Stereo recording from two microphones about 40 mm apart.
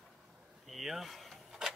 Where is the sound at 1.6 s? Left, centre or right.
Centre.